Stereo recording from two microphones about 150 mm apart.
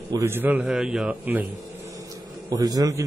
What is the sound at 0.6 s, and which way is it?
Speech, centre (ahead or behind).